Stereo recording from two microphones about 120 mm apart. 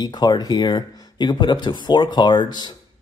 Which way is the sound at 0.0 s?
35° left (ahead or behind).